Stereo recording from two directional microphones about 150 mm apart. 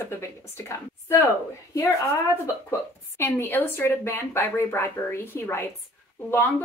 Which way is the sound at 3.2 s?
15° left (ahead or behind).